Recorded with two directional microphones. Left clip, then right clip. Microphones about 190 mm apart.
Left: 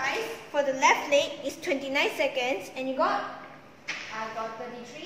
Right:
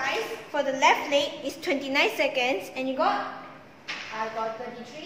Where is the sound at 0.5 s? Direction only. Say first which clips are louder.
Right 1 dB; 20° right (ahead or behind).